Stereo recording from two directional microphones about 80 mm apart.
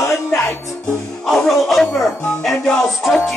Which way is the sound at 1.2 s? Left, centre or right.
Centre.